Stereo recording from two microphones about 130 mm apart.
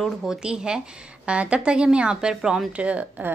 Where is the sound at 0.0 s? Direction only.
5° right (ahead or behind).